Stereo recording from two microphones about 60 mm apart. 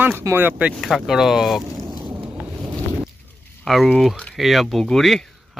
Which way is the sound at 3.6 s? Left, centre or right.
Centre.